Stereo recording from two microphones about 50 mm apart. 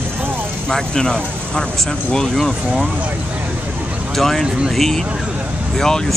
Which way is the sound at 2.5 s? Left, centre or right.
Right.